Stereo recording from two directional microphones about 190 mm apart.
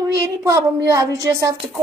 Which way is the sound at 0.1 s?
15° right (ahead or behind).